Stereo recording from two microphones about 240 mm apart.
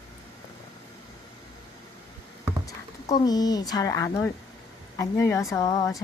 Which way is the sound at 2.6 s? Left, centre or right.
Centre.